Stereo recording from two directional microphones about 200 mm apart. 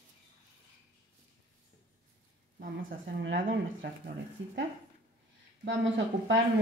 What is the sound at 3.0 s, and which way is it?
Speech, 60° right (ahead or behind).